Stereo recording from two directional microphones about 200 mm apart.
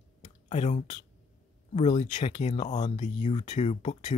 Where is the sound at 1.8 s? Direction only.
35° left (ahead or behind).